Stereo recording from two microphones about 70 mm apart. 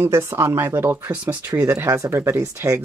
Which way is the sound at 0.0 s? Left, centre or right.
Right.